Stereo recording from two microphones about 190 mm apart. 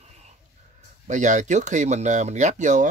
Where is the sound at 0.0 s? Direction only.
35° right (ahead or behind).